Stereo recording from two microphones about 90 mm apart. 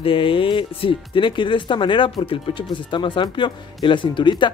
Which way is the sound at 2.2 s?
85° left.